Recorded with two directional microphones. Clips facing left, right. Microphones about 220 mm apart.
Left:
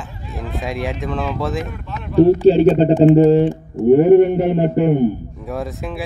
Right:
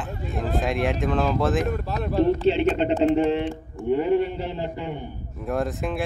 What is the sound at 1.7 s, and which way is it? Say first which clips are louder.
Speech: right 5 dB; 40° right (ahead or behind).